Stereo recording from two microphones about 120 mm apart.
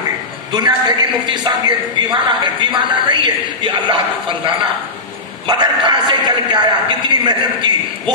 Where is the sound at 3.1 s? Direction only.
40° right (ahead or behind).